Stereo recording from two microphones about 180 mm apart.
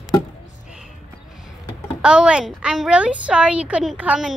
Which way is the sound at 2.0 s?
5° right (ahead or behind).